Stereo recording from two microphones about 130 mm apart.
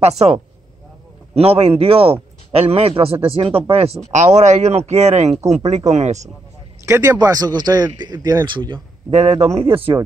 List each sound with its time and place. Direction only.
0.2 s speech: 50° right (ahead or behind)
6.9 s speech: 20° right (ahead or behind)
8.5 s speech: 40° right (ahead or behind)
9.1 s speech: 55° right (ahead or behind)